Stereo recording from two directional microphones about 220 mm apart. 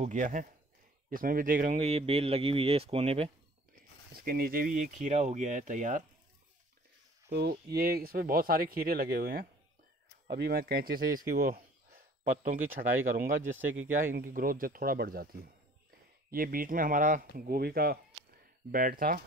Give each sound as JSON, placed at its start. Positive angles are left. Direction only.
{"t": 0.0, "sound": "speech", "side_deg": -35}
{"t": 4.2, "sound": "speech", "side_deg": -40}
{"t": 7.3, "sound": "speech", "side_deg": -45}